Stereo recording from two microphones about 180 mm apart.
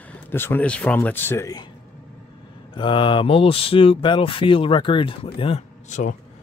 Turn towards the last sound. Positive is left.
turn(degrees=40)  # may be behind; listen again after turning